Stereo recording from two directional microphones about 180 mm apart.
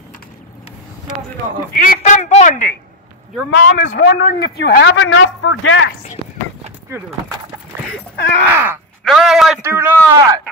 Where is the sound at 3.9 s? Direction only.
70° left (ahead or behind); by 5.9 s 90° left.